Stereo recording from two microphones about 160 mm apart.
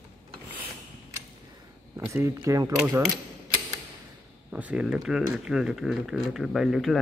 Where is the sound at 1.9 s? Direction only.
15° right (ahead or behind).